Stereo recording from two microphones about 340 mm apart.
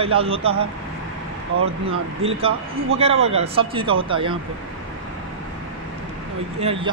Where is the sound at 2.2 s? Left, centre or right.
Centre.